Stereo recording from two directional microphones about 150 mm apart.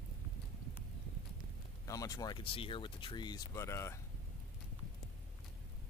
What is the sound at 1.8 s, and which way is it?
Speech, 25° left (ahead or behind).